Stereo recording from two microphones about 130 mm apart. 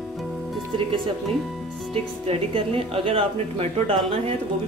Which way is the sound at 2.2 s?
50° right (ahead or behind).